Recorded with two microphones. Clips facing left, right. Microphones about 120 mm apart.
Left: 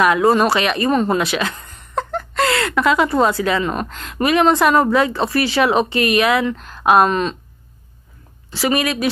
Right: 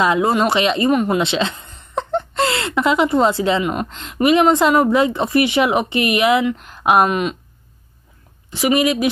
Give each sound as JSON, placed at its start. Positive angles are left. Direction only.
{"t": 0.0, "sound": "speech", "side_deg": -25}
{"t": 8.5, "sound": "speech", "side_deg": -20}